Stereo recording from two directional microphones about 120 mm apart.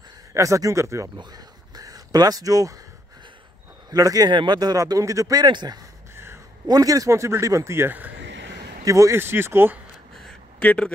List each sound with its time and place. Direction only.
0.3 s speech: 25° right (ahead or behind)
1.1 s a sound: 30° right (ahead or behind)
3.9 s a man's voice: 30° right (ahead or behind)
6.1 s a sound: 20° right (ahead or behind)
6.7 s speech: 30° right (ahead or behind)
10.6 s speech: 15° left (ahead or behind)